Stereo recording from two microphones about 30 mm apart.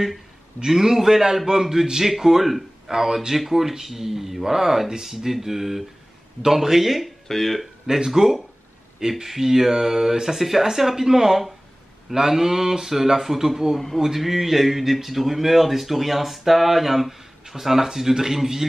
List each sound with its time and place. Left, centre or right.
0.7 s a man's voice: centre
7.2 s speech: centre
7.8 s a man's voice: centre